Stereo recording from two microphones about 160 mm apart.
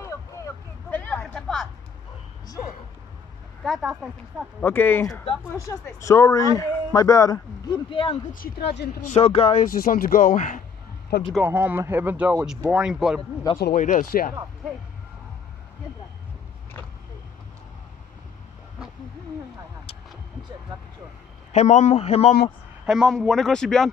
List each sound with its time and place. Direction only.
0.8 s a sound: 10° left (ahead or behind)
3.6 s speech: centre (ahead or behind)
4.6 s speech: 10° left (ahead or behind); by 8.2 s 35° left (ahead or behind)
8.3 s a woman's voice: 65° left (ahead or behind)
9.1 s speech: 40° left (ahead or behind)
9.7 s speech: 65° left (ahead or behind)
11.1 s speech: 85° left
11.4 s speech: 10° right (ahead or behind)
13.7 s speech: 55° left (ahead or behind)
21.5 s a man's voice: 45° left (ahead or behind)
22.8 s speech: centre (ahead or behind)